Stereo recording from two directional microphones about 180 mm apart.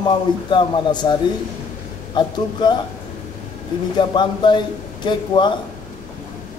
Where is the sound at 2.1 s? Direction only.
25° left (ahead or behind).